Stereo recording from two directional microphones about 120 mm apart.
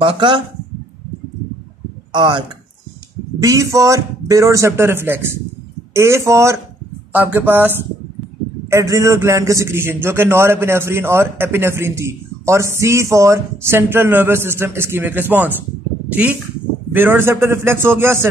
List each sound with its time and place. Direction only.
0.0 s speech: 45° right (ahead or behind)
2.1 s speech: 40° right (ahead or behind)
3.3 s a man's voice: 25° right (ahead or behind)
16.9 s a man's voice: 20° right (ahead or behind)